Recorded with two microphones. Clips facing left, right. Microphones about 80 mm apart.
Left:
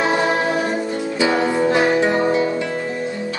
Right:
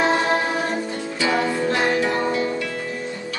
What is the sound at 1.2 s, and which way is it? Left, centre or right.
Music, left.